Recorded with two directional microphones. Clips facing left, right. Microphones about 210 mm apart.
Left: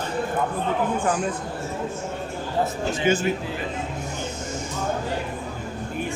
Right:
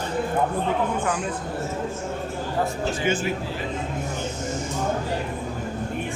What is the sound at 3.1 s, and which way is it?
Speech, 40° left (ahead or behind).